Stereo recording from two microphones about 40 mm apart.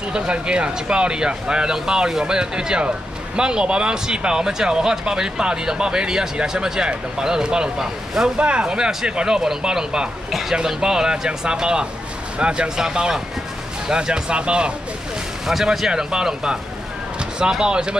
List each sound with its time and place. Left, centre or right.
0.1 s speech: right
7.8 s speech: centre
8.4 s speech: right
8.6 s speech: right
12.6 s speech: centre
15.4 s speech: centre
15.9 s speech: right